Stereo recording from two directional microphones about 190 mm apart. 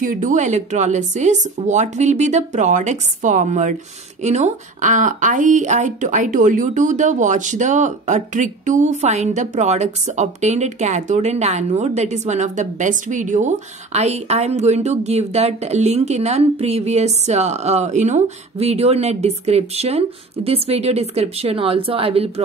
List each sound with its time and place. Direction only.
0.0 s speech: 45° right (ahead or behind)